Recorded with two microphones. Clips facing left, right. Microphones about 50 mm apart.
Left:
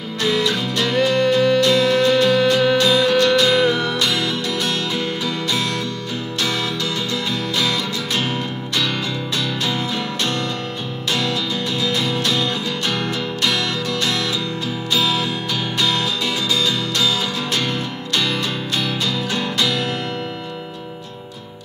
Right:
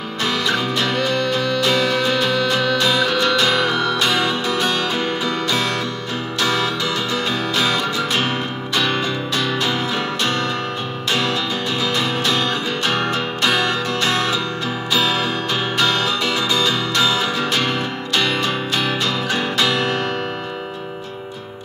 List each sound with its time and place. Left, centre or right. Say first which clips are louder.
1.1 s music: left 4 dB; centre
1.7 s music: left 3 dB; centre
3.6 s music: left 1 dB; centre
4.0 s music: right 2 dB; right